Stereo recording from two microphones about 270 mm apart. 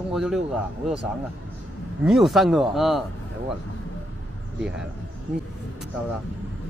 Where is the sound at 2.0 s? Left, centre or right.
Centre.